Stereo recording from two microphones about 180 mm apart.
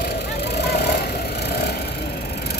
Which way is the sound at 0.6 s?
60° left (ahead or behind).